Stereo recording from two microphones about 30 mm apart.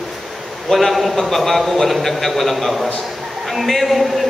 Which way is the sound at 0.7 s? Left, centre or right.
Centre.